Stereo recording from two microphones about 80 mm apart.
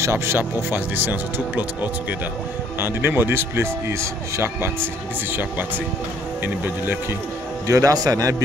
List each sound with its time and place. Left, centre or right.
0.0 s speech: right
7.6 s a man's voice: right